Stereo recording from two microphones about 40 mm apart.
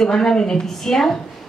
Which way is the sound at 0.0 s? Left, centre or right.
Centre.